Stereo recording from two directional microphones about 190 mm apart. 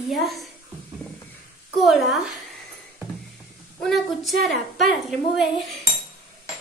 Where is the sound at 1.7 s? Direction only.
Centre (ahead or behind).